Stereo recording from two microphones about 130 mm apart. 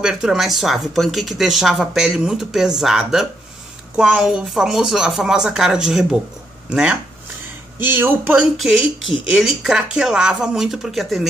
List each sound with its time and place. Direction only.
0.0 s speech: 5° right (ahead or behind)
8.5 s speech: centre (ahead or behind)